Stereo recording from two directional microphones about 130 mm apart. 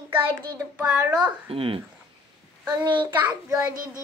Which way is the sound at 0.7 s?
10° right (ahead or behind).